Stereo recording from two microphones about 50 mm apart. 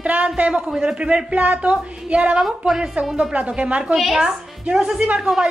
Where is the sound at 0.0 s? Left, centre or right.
Right.